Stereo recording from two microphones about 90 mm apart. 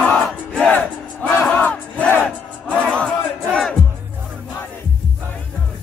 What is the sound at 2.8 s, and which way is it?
Music, 10° left (ahead or behind).